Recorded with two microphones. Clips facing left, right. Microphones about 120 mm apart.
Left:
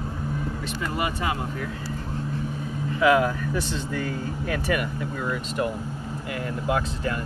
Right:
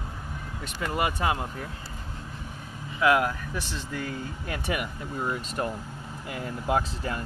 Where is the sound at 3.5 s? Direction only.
10° right (ahead or behind).